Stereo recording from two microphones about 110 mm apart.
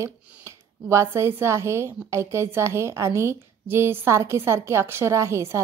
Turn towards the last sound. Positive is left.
turn(degrees=-25)  # may be behind; listen again after turning